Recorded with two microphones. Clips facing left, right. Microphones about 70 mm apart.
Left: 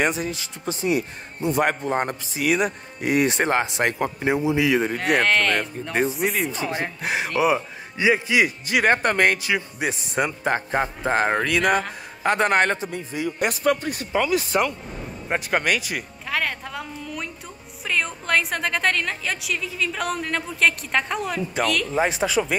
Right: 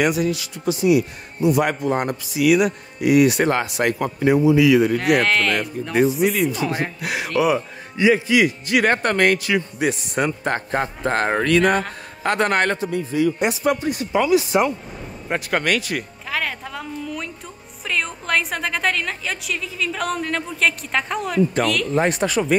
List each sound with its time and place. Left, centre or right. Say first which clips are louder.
0.0 s a man's voice: right 4 dB; left
5.0 s a woman's voice: right 2 dB; centre
6.6 s speech: right 3 dB; centre
7.0 s a man's voice: even; left
13.7 s speech: right 5 dB; left
14.5 s speech: right 1 dB; right
15.2 s a woman's voice: right 1 dB; centre